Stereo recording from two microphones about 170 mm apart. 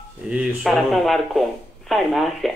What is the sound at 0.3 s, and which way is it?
Speech, centre (ahead or behind).